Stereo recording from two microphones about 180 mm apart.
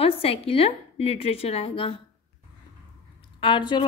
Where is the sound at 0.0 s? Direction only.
30° left (ahead or behind).